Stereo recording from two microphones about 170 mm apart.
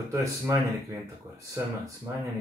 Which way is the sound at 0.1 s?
20° right (ahead or behind).